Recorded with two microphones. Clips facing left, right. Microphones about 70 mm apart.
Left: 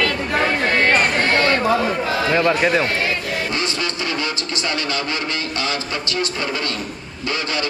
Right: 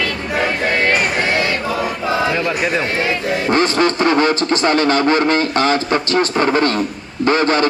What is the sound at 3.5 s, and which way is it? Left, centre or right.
A man's voice, right.